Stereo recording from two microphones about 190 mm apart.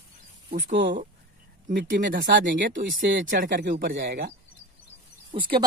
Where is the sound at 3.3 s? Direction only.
50° right (ahead or behind).